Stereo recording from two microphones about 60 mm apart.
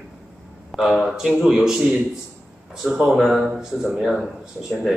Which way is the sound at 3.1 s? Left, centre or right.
Centre.